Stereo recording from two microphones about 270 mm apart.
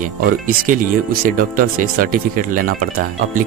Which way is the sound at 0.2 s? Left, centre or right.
Right.